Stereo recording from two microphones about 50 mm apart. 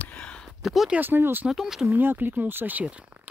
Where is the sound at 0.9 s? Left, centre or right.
Right.